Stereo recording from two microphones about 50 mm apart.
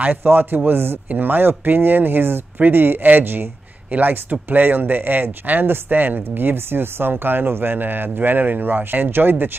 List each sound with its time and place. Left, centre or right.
0.0 s speech: right